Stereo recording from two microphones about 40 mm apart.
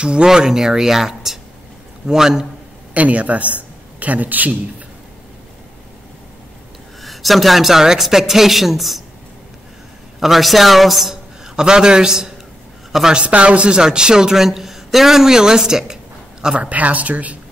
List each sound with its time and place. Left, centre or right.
0.0 s speech: right
0.3 s speech: centre
2.9 s a woman's voice: right
7.0 s a man's voice: centre
10.2 s a man's voice: centre
13.3 s speech: right
16.5 s a woman's voice: right